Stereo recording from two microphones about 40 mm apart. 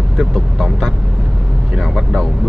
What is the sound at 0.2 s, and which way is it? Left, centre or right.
Speech, centre.